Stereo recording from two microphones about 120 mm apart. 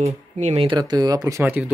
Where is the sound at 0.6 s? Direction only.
35° right (ahead or behind); by 1.6 s 20° right (ahead or behind).